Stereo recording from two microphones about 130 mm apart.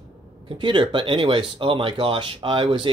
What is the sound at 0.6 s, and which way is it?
Speech, 40° right (ahead or behind).